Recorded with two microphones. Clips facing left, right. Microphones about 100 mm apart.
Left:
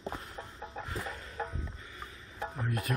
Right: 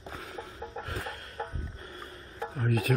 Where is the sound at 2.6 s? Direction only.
90° right.